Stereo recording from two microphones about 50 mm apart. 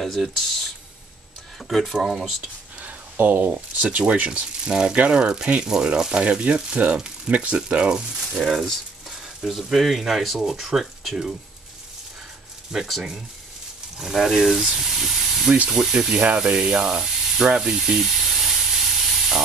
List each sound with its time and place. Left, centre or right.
0.0 s speech: centre
1.7 s speech: centre
2.0 s speech: centre
2.8 s speech: right
7.5 s speech: right
8.4 s speech: centre
12.7 s speech: centre
13.9 s speech: centre